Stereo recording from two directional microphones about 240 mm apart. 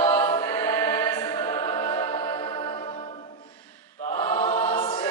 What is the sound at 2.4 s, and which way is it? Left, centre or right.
Music, centre.